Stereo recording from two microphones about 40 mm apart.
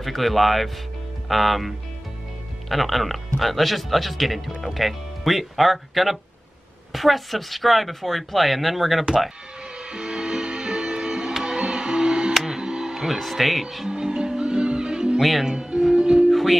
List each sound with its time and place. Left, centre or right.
0.0 s a woman's voice: centre
9.8 s music: right
13.2 s a woman's voice: centre
13.8 s music: right
15.1 s speech: centre
15.4 s music: right
16.3 s music: centre